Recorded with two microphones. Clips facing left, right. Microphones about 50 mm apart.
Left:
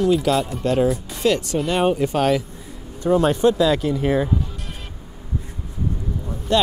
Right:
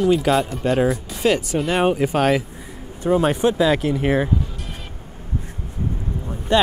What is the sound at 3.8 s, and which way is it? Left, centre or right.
Speech, right.